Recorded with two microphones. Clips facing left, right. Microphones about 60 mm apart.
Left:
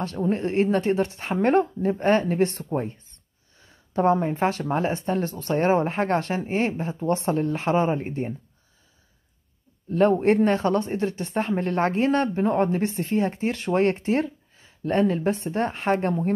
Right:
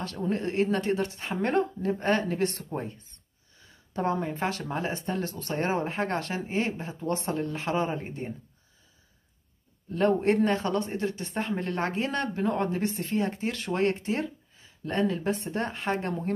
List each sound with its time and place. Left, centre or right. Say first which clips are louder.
0.0 s speech: left 5 dB; left
3.9 s speech: left 8 dB; left
9.9 s speech: left 5 dB; left